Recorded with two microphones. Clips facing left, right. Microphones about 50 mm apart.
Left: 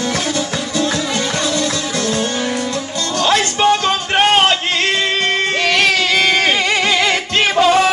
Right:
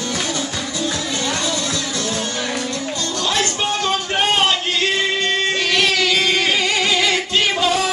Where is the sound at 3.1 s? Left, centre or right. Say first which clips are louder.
Left 7 dB; left.